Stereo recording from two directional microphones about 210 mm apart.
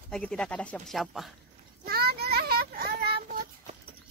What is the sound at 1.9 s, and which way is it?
Child singing, 45° right (ahead or behind).